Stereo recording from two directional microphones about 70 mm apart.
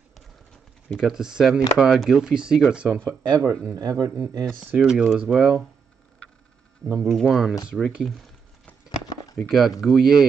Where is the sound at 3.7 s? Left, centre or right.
Right.